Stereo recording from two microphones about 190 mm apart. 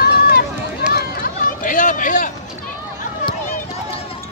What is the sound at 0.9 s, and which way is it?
Run, 45° left (ahead or behind).